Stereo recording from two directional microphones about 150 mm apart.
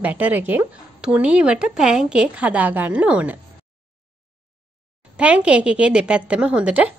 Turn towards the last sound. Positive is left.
turn(degrees=-10)  # may be behind; listen again after turning